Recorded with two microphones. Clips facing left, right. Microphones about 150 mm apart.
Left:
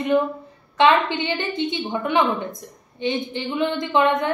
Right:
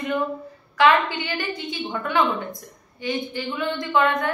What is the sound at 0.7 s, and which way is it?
Speech, 20° left (ahead or behind).